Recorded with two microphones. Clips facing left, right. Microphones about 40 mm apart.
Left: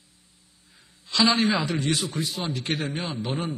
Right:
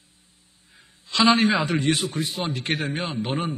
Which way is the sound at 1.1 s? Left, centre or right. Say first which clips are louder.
Right 3 dB; right.